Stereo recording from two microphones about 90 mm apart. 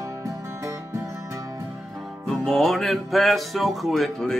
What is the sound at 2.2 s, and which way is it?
Music, 5° left (ahead or behind).